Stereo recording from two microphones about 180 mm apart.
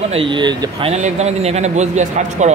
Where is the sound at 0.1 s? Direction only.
30° right (ahead or behind).